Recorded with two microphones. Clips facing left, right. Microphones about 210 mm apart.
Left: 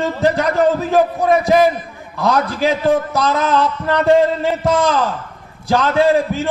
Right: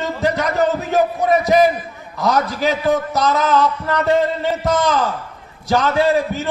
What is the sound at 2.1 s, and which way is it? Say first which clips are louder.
A man's voice: left 1 dB; 30° left (ahead or behind).